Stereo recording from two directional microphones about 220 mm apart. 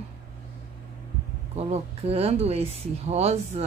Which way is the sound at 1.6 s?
25° right (ahead or behind).